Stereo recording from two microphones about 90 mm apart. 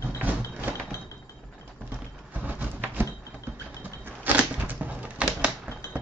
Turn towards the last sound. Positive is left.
turn(degrees=-15)  # may be behind; listen again after turning